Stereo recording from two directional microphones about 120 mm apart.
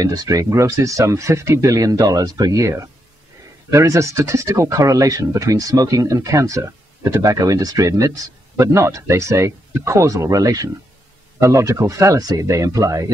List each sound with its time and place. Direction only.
0.0 s speech: 30° right (ahead or behind)
3.7 s speech: 25° right (ahead or behind)